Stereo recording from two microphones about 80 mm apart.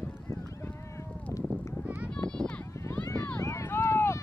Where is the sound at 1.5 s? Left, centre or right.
Centre.